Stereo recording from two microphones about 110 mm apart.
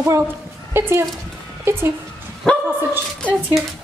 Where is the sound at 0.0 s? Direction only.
25° right (ahead or behind).